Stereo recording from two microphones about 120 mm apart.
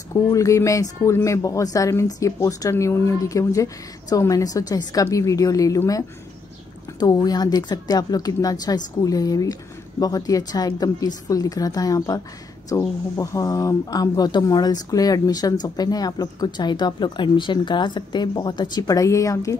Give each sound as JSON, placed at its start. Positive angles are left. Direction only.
{"t": 0.1, "sound": "a woman's voice", "side_deg": 25}